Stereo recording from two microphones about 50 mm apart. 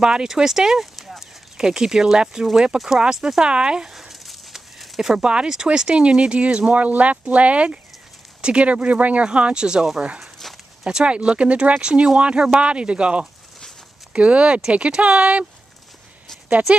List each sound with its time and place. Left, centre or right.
0.0 s speech: centre
0.9 s horse: centre
1.6 s speech: centre
3.9 s a sound: centre
5.1 s speech: centre
9.2 s speech: centre
10.2 s walk: centre
10.9 s speech: centre